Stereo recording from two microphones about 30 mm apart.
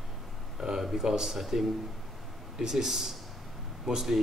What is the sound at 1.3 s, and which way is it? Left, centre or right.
Speech, centre.